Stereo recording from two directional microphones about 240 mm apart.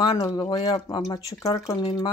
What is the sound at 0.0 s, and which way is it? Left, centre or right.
Speech, centre.